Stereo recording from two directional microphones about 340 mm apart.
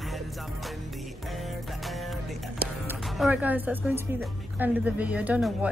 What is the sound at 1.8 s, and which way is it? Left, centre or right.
A woman's voice, centre.